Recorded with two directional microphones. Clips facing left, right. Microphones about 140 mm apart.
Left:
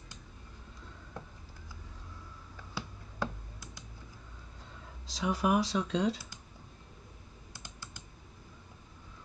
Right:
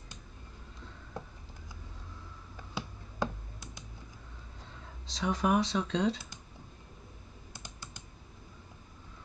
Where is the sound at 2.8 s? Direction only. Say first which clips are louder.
Right 2 dB; 20° right (ahead or behind).